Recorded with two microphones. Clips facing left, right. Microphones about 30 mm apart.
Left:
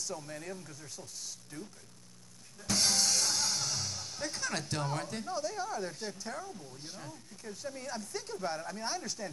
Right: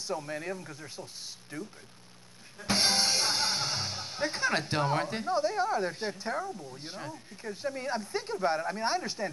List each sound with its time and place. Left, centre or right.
0.0 s speech: right
1.5 s speech: centre
2.6 s speech: right